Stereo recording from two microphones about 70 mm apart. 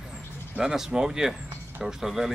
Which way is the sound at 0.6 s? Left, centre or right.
Centre.